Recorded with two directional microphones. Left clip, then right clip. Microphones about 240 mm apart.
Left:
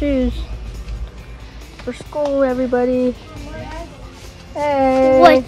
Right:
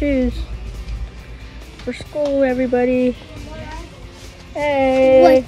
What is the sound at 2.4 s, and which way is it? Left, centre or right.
Speech, left.